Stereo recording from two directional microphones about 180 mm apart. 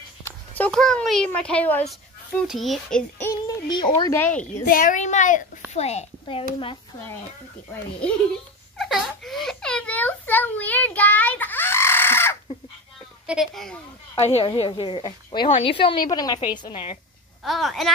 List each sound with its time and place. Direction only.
0.6 s a child's voice: 5° left (ahead or behind); by 4.1 s 25° left (ahead or behind)
4.2 s a woman's voice: 10° left (ahead or behind)
4.6 s a woman's voice: 50° left (ahead or behind); by 6.8 s 30° left (ahead or behind)
8.7 s a sound: centre (ahead or behind)
13.3 s speech: centre (ahead or behind)
14.3 s a woman's voice: 30° left (ahead or behind)
17.4 s speech: centre (ahead or behind)